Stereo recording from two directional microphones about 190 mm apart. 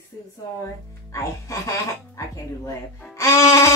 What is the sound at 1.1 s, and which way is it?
Speech, 15° left (ahead or behind).